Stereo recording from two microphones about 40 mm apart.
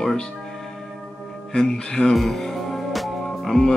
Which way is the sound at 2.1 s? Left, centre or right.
Centre.